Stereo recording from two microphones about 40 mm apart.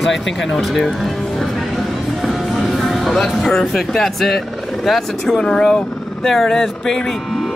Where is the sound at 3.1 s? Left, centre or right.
Centre.